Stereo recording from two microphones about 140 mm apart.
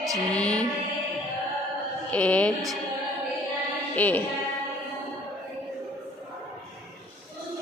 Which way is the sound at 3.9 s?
10° left (ahead or behind).